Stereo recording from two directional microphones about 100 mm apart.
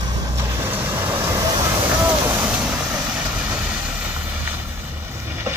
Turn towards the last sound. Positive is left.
turn(degrees=-25)  # may be behind; listen again after turning